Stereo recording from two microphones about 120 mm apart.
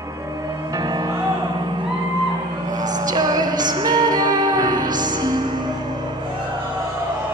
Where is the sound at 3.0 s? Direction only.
35° right (ahead or behind).